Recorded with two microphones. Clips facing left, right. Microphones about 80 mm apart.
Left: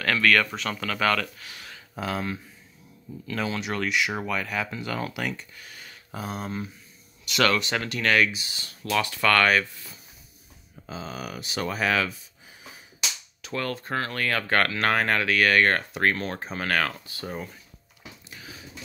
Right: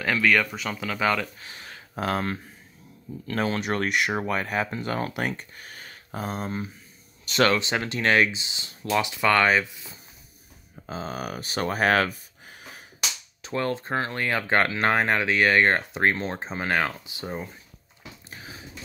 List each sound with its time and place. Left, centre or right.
0.0 s speech: centre
1.2 s speech: right
2.0 s speech: right
4.1 s speech: right; by 9.9 s centre
10.9 s speech: right
13.4 s speech: right
18.3 s a sound: right